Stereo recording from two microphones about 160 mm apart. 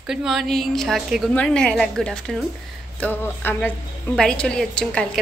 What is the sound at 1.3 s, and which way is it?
A woman's voice, 5° left (ahead or behind).